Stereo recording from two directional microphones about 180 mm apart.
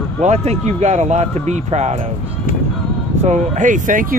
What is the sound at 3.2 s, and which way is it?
Speech, 40° right (ahead or behind).